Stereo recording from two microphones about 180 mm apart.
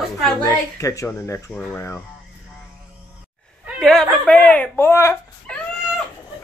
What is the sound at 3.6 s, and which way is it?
Speech, 5° left (ahead or behind).